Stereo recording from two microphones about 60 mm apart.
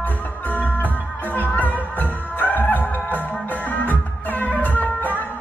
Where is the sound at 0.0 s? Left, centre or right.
Left.